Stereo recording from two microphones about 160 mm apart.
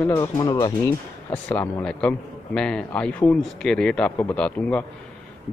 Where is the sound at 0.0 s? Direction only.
20° left (ahead or behind).